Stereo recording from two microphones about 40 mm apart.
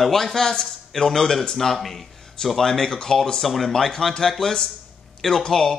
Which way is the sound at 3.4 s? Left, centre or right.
Centre.